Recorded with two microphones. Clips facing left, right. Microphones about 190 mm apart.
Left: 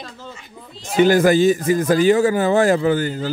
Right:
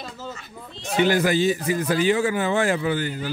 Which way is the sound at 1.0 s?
45° left (ahead or behind).